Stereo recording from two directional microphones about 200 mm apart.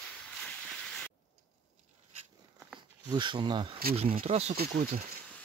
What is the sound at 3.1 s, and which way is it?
Speech, 25° right (ahead or behind).